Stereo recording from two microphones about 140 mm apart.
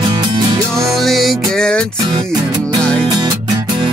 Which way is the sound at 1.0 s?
Centre (ahead or behind).